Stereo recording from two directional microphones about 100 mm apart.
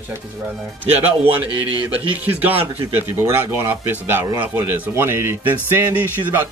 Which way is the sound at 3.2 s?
25° right (ahead or behind).